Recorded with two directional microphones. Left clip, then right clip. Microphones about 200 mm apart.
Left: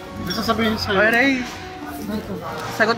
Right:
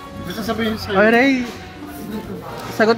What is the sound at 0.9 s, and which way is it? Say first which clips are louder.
Speech: right 3 dB; 20° right (ahead or behind).